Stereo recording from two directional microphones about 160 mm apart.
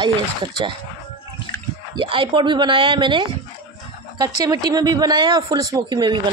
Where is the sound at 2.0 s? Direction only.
30° right (ahead or behind).